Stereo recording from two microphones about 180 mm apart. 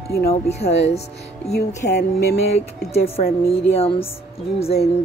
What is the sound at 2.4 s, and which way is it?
Speech, 35° left (ahead or behind).